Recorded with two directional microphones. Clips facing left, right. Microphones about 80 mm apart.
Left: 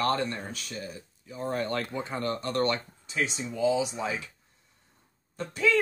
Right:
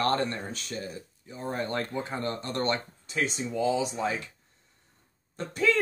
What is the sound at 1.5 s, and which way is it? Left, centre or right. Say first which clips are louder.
Speech: even; right.